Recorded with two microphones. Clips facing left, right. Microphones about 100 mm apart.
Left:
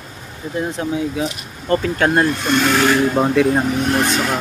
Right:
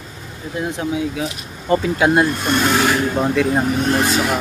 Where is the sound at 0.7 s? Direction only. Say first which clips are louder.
Even; 5° right (ahead or behind).